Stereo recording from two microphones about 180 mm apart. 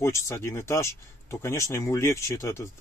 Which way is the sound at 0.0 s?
15° left (ahead or behind).